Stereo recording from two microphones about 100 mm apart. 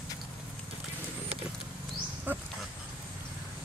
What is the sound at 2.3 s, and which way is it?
Pig, 20° right (ahead or behind).